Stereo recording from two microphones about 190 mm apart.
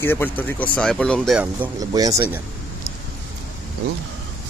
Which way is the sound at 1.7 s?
20° right (ahead or behind).